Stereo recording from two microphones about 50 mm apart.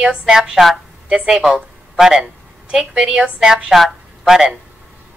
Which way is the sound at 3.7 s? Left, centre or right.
Centre.